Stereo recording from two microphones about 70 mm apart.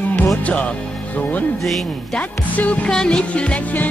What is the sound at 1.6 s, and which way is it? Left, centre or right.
Music, centre.